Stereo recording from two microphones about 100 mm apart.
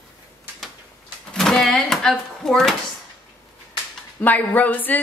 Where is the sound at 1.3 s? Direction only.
5° left (ahead or behind).